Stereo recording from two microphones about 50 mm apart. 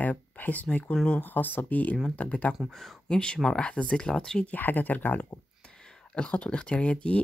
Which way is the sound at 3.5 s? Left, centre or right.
Left.